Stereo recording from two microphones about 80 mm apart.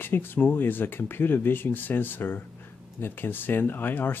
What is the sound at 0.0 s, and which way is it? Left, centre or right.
Speech, left.